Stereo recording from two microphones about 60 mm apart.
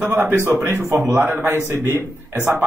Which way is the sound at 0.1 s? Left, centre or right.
Right.